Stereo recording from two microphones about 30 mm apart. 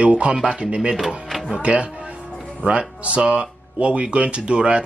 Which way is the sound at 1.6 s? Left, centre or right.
Right.